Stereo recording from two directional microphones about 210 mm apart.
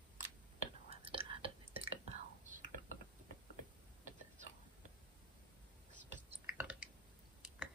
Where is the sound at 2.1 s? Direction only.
35° right (ahead or behind).